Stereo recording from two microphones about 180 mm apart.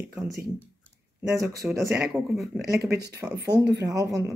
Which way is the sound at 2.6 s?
60° right (ahead or behind).